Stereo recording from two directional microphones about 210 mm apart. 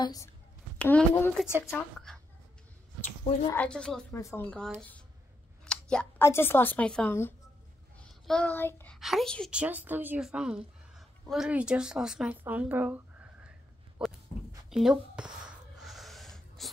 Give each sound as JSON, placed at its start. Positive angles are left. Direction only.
{"t": 0.0, "sound": "a woman's voice", "side_deg": 15}
{"t": 3.4, "sound": "a woman's voice", "side_deg": 5}
{"t": 14.7, "sound": "a sound", "side_deg": -5}